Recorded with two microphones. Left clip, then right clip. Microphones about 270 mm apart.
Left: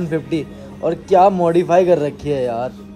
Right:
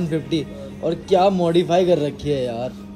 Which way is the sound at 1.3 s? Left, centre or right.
Centre.